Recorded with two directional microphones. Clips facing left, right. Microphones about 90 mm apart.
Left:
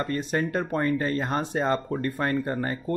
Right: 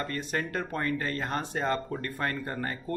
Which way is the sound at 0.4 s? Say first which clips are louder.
Left 6 dB; 20° left (ahead or behind).